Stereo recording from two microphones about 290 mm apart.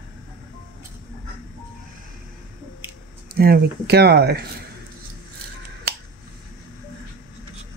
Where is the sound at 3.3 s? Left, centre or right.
Right.